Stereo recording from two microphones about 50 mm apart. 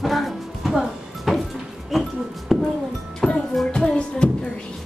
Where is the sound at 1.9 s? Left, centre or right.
Centre.